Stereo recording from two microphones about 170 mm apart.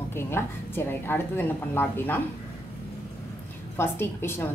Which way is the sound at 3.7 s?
15° left (ahead or behind).